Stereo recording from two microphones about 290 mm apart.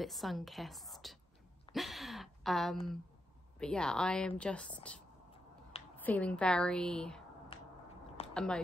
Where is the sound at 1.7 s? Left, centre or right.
Centre.